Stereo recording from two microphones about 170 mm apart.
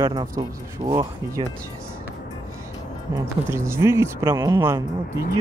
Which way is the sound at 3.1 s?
15° right (ahead or behind).